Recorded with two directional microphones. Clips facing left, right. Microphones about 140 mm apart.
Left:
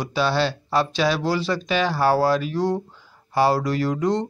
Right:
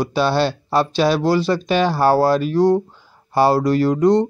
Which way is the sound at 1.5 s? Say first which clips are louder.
Right 5 dB; 35° right (ahead or behind).